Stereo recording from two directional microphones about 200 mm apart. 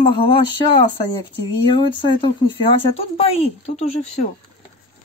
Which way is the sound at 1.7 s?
25° left (ahead or behind).